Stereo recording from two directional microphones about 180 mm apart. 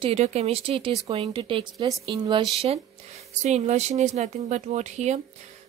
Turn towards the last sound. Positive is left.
turn(degrees=-40)  # may be behind; listen again after turning